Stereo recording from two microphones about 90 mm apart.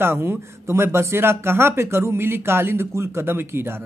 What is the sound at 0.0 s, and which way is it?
Speech, 25° right (ahead or behind).